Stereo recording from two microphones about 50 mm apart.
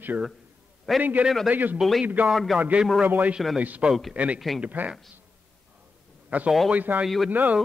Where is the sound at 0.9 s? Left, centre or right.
Centre.